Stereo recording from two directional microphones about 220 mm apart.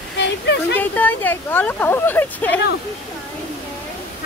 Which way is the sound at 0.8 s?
10° left (ahead or behind).